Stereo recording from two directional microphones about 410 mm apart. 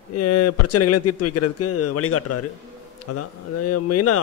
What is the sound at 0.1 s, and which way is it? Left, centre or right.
A man's voice, left.